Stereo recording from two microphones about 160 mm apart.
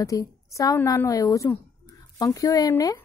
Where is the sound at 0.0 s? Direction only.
20° left (ahead or behind).